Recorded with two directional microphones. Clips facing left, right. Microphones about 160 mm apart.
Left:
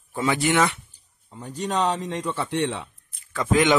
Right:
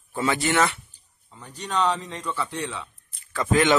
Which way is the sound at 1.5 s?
40° left (ahead or behind).